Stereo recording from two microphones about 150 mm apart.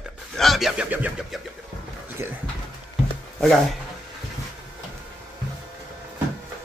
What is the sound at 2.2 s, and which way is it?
Speech, 15° right (ahead or behind).